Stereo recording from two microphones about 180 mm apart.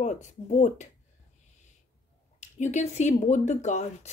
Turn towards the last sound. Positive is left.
turn(degrees=40)  # may be behind; listen again after turning